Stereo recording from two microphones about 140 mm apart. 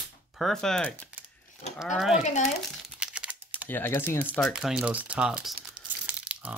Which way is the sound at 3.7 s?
15° left (ahead or behind).